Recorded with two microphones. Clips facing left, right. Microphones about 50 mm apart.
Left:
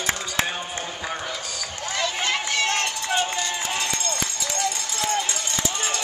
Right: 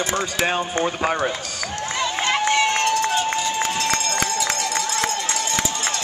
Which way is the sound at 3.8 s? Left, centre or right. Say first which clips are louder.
Right 5 dB; right.